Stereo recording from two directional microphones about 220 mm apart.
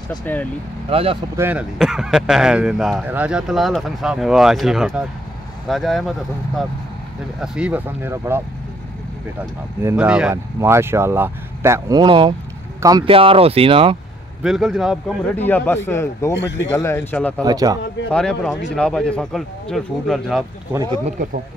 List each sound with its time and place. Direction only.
0.2 s speech: 5° left (ahead or behind)
0.8 s speech: 25° right (ahead or behind)
1.3 s speech: 10° right (ahead or behind)
7.3 s speech: 5° right (ahead or behind)
9.4 s speech: 10° right (ahead or behind); by 13.9 s 25° right (ahead or behind)
14.4 s speech: centre (ahead or behind)
17.4 s speech: 15° right (ahead or behind)
18.1 s speech: 5° left (ahead or behind)
20.7 s speech: 15° right (ahead or behind)